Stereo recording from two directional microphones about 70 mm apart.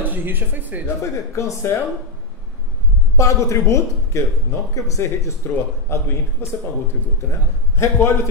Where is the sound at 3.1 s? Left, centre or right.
Left.